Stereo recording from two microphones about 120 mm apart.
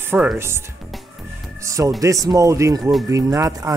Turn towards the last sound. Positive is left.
turn(degrees=-30)  # may be behind; listen again after turning